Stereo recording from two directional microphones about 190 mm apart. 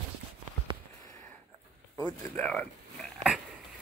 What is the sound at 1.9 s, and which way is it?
Speech, 10° left (ahead or behind).